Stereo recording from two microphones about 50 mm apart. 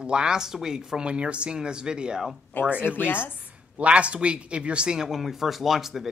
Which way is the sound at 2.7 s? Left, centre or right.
Right.